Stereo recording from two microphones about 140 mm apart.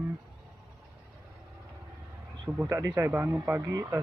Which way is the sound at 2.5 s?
15° right (ahead or behind).